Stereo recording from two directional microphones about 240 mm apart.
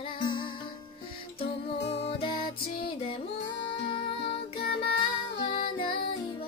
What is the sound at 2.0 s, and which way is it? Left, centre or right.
Music, left.